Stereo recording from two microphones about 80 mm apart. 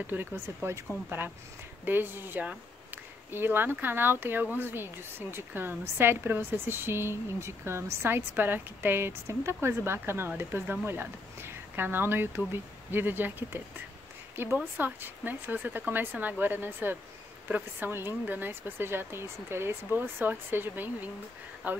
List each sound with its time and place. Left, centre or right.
0.0 s speech: right
1.9 s speech: right